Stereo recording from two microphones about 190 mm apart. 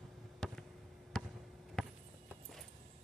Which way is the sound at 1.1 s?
Centre (ahead or behind).